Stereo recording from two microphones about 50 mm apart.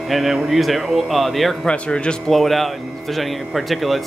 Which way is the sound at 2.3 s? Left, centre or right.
Centre.